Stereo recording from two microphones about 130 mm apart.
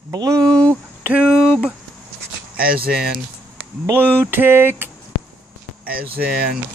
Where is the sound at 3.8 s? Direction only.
15° right (ahead or behind).